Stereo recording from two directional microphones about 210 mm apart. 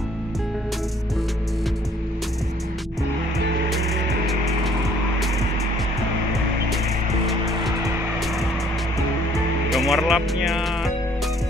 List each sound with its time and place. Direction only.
3.7 s music: centre (ahead or behind)
7.2 s music: centre (ahead or behind)
9.7 s speech: centre (ahead or behind)